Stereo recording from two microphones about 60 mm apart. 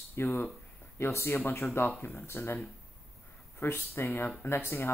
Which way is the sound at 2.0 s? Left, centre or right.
Left.